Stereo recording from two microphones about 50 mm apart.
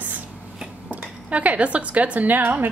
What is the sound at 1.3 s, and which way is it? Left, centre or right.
A woman's voice, right.